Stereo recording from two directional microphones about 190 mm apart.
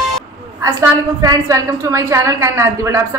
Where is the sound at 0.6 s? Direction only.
20° right (ahead or behind).